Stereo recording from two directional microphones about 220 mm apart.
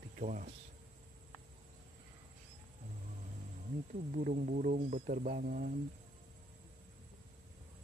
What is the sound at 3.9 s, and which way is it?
Speech, 35° right (ahead or behind).